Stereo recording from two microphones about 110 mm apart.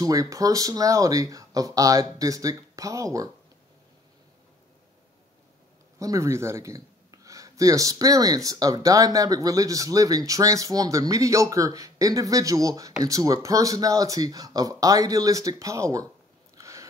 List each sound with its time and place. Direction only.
0.0 s speech: 35° right (ahead or behind)
5.9 s speech: 30° right (ahead or behind)
16.5 s a sound: 30° right (ahead or behind)